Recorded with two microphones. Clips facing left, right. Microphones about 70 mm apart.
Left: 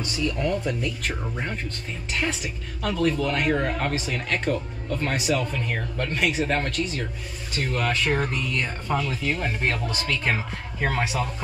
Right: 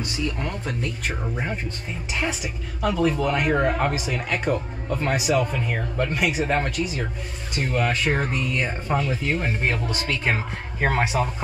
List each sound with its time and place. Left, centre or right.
0.0 s speech: centre
1.0 s speech: centre
10.8 s speech: right